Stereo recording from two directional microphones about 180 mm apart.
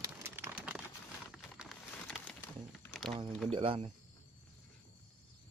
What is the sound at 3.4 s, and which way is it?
Speech, 30° right (ahead or behind).